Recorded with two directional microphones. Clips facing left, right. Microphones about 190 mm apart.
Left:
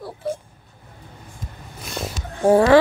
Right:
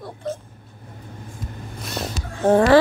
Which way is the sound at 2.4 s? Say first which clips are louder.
Left 1 dB; 10° left (ahead or behind).